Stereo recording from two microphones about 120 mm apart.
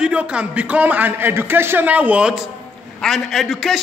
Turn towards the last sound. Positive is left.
turn(degrees=0)  # may be behind; listen again after turning